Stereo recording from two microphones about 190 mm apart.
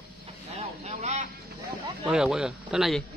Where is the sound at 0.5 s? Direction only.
35° right (ahead or behind).